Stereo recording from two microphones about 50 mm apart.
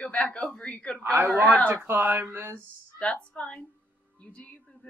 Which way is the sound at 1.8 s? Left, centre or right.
Right.